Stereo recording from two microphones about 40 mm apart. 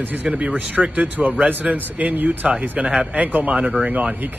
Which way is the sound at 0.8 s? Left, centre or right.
Right.